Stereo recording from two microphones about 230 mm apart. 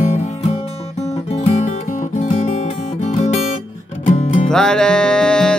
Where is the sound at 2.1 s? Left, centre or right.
Left.